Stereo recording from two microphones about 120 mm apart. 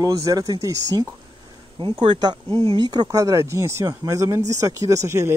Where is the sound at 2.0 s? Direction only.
40° right (ahead or behind).